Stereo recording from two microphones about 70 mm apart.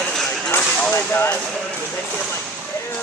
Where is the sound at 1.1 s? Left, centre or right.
Left.